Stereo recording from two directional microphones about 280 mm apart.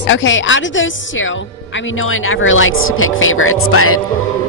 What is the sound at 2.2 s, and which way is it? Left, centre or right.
A woman's voice, left.